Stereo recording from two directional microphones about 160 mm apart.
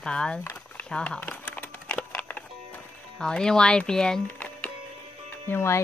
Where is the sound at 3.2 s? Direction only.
5° left (ahead or behind).